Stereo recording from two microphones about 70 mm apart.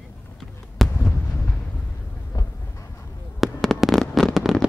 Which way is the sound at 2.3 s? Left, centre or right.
Left.